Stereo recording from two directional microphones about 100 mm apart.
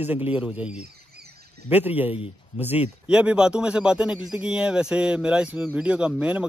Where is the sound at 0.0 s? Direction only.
15° right (ahead or behind).